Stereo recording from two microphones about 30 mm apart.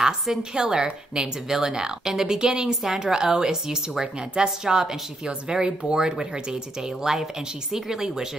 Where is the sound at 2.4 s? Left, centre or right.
Right.